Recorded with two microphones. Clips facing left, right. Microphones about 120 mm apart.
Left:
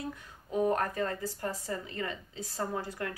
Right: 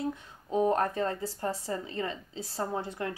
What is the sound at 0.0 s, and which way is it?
Speech, 25° right (ahead or behind).